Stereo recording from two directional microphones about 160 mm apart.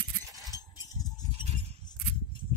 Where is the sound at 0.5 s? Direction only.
20° left (ahead or behind).